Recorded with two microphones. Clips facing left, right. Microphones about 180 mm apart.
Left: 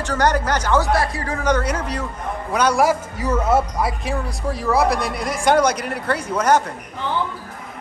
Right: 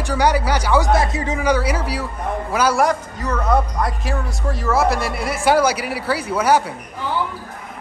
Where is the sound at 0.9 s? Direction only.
20° right (ahead or behind).